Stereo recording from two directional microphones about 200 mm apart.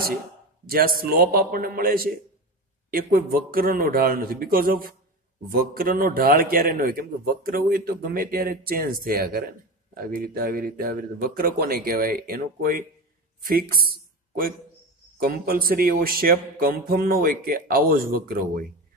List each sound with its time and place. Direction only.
0.7 s a man's voice: 45° right (ahead or behind)